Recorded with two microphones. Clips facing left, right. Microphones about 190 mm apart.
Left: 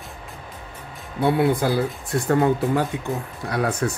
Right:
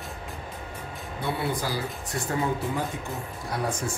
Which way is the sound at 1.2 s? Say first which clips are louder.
Left 10 dB; 60° left (ahead or behind).